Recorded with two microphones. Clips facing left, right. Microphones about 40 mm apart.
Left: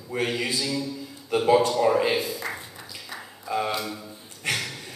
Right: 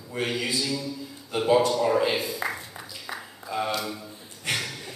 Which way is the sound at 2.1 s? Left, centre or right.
Right.